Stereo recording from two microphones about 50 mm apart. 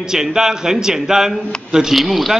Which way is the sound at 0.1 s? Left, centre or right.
Centre.